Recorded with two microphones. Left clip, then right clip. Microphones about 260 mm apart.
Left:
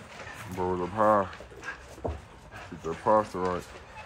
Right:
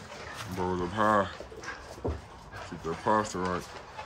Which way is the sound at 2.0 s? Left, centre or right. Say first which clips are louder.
Left 1 dB; left.